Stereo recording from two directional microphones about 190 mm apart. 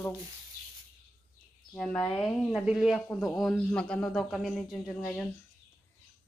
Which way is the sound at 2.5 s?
5° right (ahead or behind).